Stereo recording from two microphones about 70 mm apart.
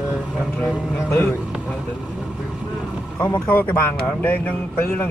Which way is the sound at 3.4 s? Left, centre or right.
Left.